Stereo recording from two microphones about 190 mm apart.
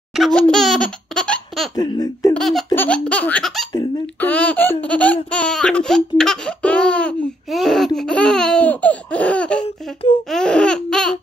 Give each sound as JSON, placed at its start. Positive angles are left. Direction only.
{"t": 0.1, "sound": "laughter", "side_deg": 0}
{"t": 1.8, "sound": "speech", "side_deg": 20}
{"t": 2.3, "sound": "laughter", "side_deg": 0}
{"t": 4.2, "sound": "speech", "side_deg": 5}
{"t": 10.3, "sound": "laughter", "side_deg": 5}